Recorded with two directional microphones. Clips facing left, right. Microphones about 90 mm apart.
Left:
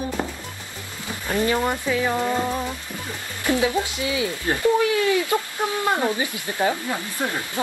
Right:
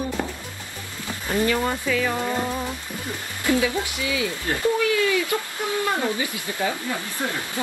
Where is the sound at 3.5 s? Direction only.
25° left (ahead or behind).